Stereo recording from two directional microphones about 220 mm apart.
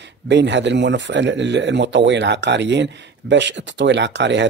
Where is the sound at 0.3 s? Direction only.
55° right (ahead or behind).